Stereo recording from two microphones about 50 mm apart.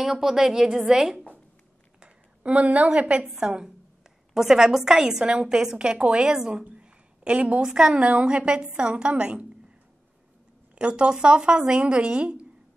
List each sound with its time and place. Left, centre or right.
0.0 s a woman's voice: centre
2.0 s a woman's voice: right
10.7 s speech: right